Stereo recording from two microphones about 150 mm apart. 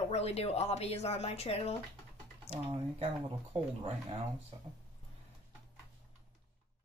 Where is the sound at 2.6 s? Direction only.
40° right (ahead or behind).